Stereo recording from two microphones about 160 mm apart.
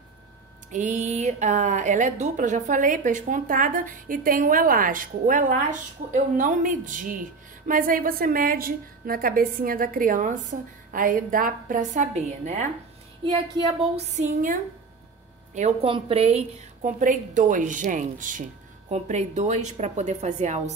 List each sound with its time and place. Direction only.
0.7 s a woman's voice: 50° right (ahead or behind)
13.9 s a woman's voice: 50° right (ahead or behind)
15.5 s a woman's voice: 40° right (ahead or behind)
18.9 s a woman's voice: 45° right (ahead or behind)